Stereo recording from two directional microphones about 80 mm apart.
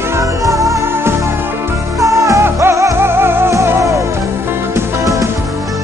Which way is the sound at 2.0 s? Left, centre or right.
Right.